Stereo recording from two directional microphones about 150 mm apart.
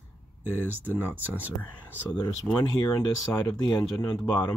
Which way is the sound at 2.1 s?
25° left (ahead or behind).